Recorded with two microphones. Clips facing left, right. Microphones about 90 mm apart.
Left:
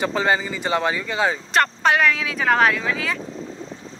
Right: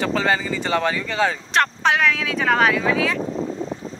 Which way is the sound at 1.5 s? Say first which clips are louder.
Left 1 dB; centre (ahead or behind).